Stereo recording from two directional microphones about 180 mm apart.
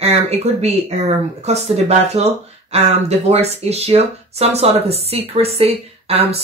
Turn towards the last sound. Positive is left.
turn(degrees=-35)  # may be behind; listen again after turning